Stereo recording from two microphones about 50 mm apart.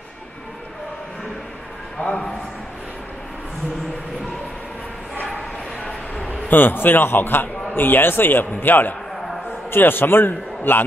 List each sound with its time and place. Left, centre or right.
2.0 s a man's voice: centre
5.9 s a sound: left
6.5 s a man's voice: left